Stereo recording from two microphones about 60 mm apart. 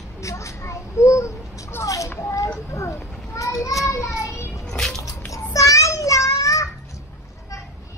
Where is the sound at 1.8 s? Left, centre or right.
Left.